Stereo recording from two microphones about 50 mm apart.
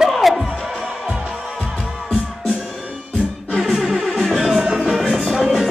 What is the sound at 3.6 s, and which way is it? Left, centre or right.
Music, centre.